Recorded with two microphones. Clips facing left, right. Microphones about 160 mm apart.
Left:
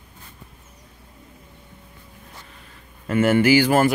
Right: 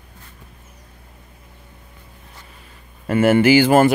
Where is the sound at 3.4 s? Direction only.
25° right (ahead or behind).